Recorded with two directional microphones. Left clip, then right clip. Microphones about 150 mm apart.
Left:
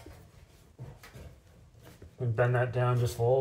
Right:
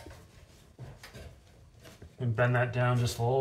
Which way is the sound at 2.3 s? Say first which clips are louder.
Even; 20° left (ahead or behind).